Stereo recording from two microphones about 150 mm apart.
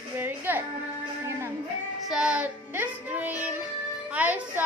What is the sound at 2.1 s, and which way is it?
A woman's voice, 5° right (ahead or behind).